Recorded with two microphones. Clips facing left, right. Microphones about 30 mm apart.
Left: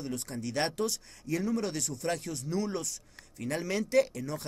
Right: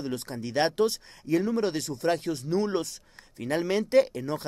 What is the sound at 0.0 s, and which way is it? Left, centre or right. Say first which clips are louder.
Speech: right 3 dB; right.